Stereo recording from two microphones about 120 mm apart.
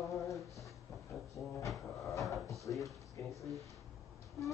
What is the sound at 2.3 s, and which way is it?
Drawer open or close, centre (ahead or behind).